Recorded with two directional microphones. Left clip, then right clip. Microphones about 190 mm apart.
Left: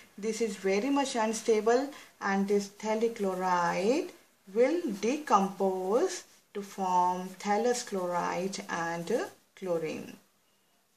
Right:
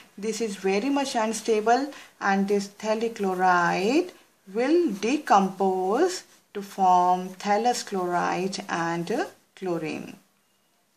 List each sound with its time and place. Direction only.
0.2 s speech: 35° right (ahead or behind)